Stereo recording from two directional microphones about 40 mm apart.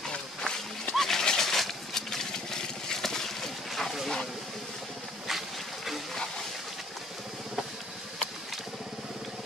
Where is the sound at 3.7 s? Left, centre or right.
Centre.